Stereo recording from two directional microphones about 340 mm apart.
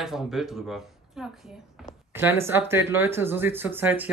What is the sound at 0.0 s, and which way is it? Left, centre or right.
Speech, centre.